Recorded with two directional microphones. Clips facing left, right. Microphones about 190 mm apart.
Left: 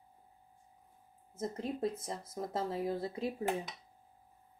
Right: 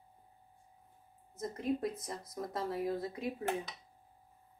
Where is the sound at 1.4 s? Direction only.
30° left (ahead or behind).